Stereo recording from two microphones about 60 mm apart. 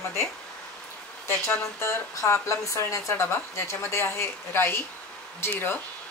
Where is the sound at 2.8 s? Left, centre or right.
Left.